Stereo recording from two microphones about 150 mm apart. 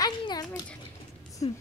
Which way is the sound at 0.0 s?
25° left (ahead or behind).